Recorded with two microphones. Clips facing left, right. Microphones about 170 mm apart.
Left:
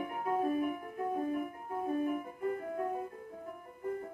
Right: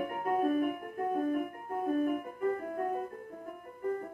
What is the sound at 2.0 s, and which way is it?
Music, 55° right (ahead or behind).